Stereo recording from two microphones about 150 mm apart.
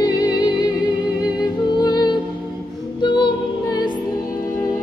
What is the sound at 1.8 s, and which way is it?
Music, 30° left (ahead or behind).